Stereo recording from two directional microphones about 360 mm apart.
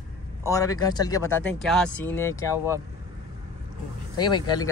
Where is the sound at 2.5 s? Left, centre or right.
Centre.